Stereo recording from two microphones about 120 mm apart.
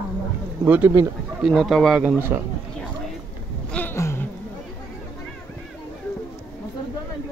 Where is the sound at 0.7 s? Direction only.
15° right (ahead or behind).